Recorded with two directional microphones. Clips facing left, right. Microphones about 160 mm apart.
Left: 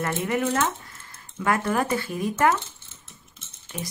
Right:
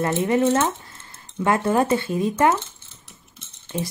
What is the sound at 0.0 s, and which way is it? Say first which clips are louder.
Speech: right 6 dB; 30° right (ahead or behind).